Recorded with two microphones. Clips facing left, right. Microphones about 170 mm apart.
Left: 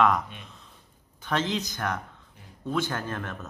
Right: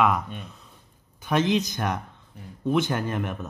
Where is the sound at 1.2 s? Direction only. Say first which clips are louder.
Right 5 dB; 15° right (ahead or behind).